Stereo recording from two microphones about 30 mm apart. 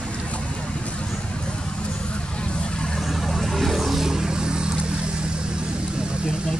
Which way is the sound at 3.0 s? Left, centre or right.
Centre.